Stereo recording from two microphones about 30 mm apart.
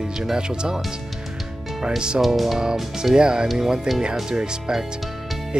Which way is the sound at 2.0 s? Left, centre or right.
Right.